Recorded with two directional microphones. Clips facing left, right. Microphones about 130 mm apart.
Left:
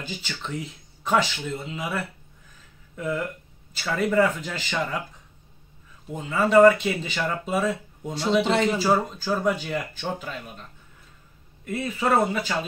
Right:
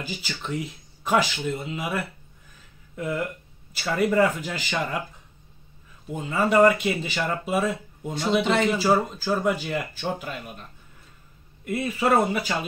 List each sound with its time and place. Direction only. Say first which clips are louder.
0.0 s speech: right 1 dB; 10° right (ahead or behind)
6.2 s speech: left 3 dB; 10° right (ahead or behind)
8.4 s a man's voice: left 1 dB; 30° left (ahead or behind)
8.7 s speech: right 1 dB; centre (ahead or behind)